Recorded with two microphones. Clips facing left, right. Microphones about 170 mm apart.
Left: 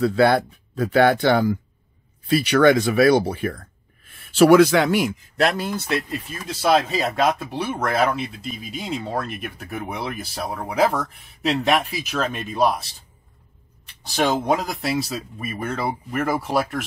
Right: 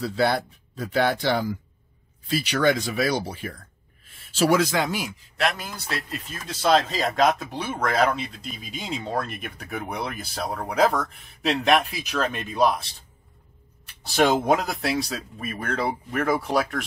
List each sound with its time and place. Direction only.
0.0 s speech: 55° left (ahead or behind)
5.4 s speech: 35° left (ahead or behind)
6.4 s speech: 10° left (ahead or behind)
14.0 s speech: centre (ahead or behind)